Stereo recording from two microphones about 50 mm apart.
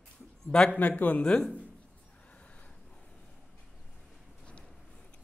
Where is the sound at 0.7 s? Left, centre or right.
Left.